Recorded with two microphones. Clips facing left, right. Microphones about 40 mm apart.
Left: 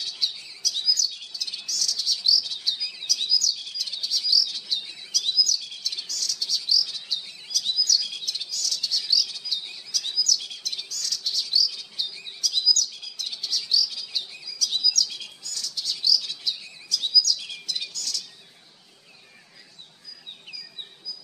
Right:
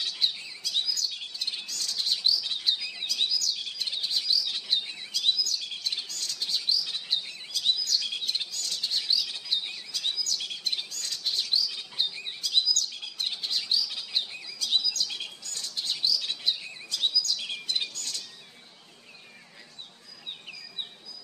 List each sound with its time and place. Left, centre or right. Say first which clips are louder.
0.0 s bird: right 1 dB; right